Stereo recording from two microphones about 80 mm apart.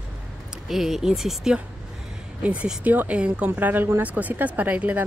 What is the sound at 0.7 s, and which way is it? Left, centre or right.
Speech, centre.